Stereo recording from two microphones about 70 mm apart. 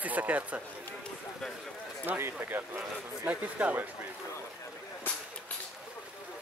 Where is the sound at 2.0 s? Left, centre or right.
Right.